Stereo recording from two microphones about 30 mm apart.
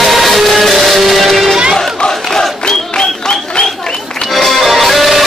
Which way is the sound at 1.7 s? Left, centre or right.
Left.